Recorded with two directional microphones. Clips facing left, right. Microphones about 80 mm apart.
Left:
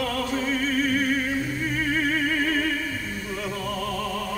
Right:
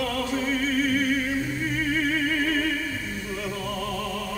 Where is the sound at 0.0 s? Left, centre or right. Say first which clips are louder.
Even; left.